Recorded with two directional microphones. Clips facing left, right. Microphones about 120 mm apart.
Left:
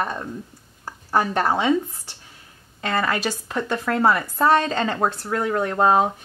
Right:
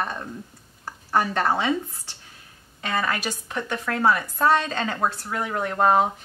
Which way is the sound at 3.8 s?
30° left (ahead or behind).